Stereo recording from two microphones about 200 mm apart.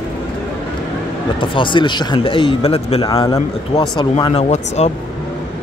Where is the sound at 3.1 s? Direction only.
15° left (ahead or behind); by 4.9 s 30° left (ahead or behind).